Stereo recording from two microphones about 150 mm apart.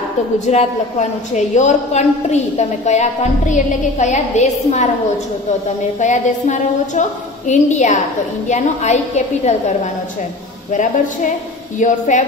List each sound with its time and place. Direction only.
0.5 s a woman's voice: 50° left (ahead or behind)
5.9 s a woman's voice: 55° left (ahead or behind)